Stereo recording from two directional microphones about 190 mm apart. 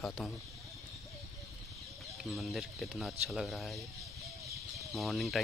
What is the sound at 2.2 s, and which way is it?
Speech, centre (ahead or behind).